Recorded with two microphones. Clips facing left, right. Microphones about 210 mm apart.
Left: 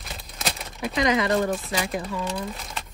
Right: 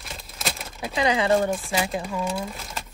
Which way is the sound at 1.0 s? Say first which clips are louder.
Even; 30° right (ahead or behind).